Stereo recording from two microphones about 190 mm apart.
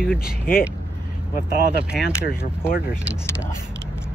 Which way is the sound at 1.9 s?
5° right (ahead or behind).